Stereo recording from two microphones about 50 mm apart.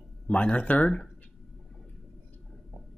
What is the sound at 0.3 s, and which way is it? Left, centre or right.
Speech, left.